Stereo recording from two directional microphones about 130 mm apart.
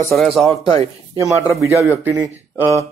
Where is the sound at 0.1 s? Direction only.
Centre (ahead or behind).